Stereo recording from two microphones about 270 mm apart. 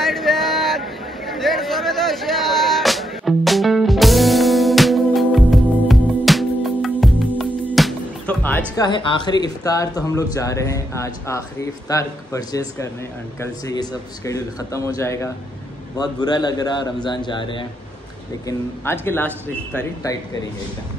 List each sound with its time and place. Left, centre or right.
0.0 s chatter: centre
11.9 s a man's voice: centre